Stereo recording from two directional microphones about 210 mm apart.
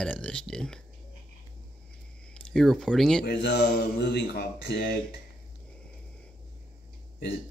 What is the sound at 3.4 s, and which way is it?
Speech, 50° left (ahead or behind).